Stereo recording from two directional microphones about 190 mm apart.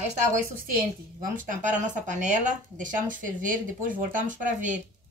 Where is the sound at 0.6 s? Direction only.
45° right (ahead or behind).